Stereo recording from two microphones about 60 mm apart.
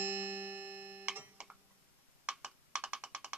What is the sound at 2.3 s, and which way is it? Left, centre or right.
Music, centre.